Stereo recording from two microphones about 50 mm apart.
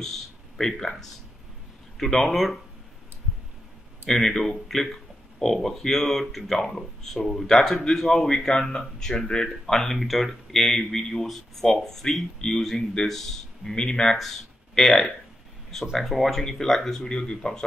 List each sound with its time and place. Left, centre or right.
0.0 s speech: centre
4.1 s speech: centre